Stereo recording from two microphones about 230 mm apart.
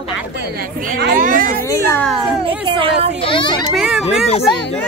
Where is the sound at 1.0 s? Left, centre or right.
Right.